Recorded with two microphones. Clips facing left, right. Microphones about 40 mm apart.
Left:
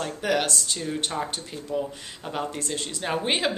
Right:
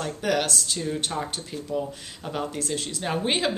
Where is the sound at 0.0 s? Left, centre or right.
Centre.